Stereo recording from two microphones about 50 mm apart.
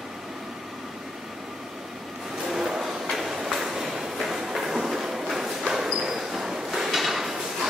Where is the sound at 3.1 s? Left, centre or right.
Centre.